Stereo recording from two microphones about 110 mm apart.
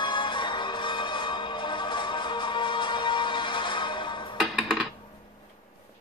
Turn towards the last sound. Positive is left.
turn(degrees=0)  # may be behind; listen again after turning